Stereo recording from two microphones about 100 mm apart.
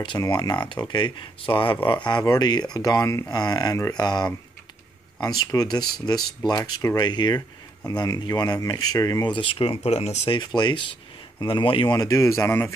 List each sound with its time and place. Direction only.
0.3 s speech: 45° left (ahead or behind)
2.0 s speech: 45° left (ahead or behind)
9.3 s speech: 60° left (ahead or behind); by 10.4 s 85° left
10.4 s speech: 50° left (ahead or behind)
11.9 s speech: 35° left (ahead or behind)